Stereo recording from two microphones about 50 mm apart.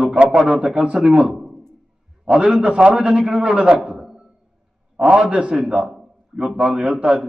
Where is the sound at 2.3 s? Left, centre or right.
Centre.